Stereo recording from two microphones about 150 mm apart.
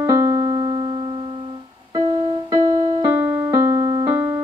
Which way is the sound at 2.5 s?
25° right (ahead or behind).